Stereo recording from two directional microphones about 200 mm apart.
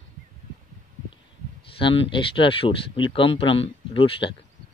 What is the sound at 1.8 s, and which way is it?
Speech, 25° left (ahead or behind).